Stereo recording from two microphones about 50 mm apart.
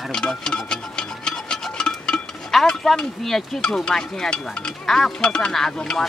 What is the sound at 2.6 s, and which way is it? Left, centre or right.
Speech, centre.